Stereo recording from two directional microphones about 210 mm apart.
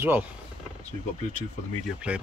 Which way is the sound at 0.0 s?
10° right (ahead or behind).